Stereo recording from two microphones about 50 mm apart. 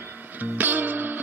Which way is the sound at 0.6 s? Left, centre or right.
Right.